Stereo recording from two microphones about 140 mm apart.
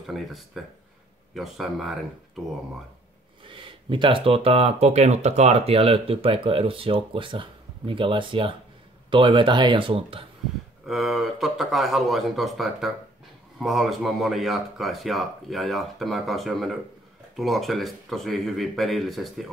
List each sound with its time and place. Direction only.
0.0 s speech: centre (ahead or behind)
3.4 s speech: 35° right (ahead or behind)
10.9 s speech: centre (ahead or behind)